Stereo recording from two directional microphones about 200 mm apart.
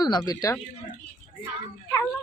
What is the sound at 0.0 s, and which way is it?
Speech, 20° left (ahead or behind).